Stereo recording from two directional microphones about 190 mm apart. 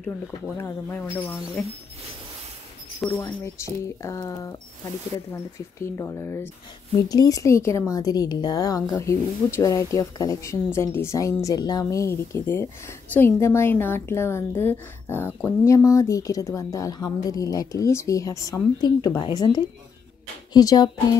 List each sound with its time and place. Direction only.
0.6 s a woman's voice: 10° left (ahead or behind)
3.2 s a woman's voice: 15° left (ahead or behind)